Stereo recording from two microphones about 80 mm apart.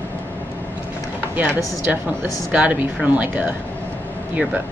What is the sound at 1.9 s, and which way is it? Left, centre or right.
A woman's voice, centre.